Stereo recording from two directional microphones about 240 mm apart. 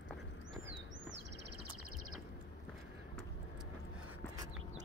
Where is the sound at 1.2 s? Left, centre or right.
Right.